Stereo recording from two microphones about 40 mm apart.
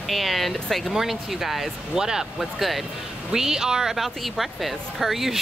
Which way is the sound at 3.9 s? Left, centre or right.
Centre.